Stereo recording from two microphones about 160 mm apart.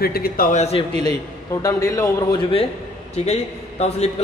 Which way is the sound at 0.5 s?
45° left (ahead or behind).